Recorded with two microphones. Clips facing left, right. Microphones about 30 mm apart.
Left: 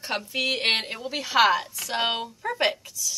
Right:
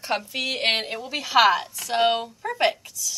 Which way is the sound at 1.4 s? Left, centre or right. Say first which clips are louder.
Even; centre.